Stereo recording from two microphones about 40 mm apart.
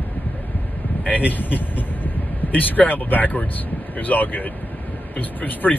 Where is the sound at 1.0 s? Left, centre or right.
Left.